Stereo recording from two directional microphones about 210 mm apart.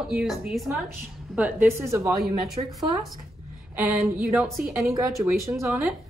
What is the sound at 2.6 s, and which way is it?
Speech, 25° right (ahead or behind).